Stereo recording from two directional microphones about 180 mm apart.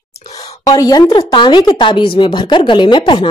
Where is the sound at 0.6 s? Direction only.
20° left (ahead or behind).